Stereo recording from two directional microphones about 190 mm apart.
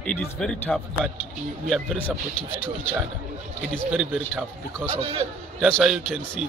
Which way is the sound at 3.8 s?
Centre (ahead or behind).